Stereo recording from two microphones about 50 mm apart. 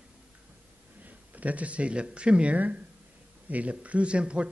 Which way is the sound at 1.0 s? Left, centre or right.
Right.